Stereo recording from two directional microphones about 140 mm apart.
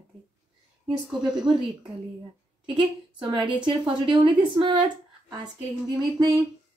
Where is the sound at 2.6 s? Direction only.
35° right (ahead or behind).